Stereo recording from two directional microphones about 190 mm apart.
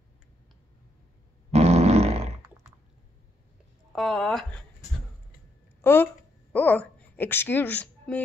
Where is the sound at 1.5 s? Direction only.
35° right (ahead or behind).